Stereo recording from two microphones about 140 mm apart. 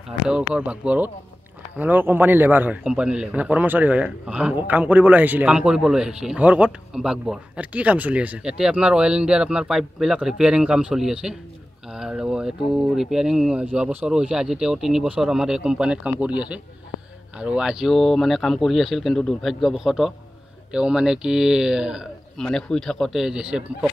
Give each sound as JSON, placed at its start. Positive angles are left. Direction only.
{"t": 0.3, "sound": "a man's voice", "side_deg": -10}
{"t": 22.4, "sound": "speech", "side_deg": 5}